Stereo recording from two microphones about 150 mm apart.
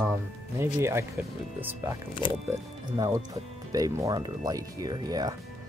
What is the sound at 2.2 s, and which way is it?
Speech, 30° left (ahead or behind).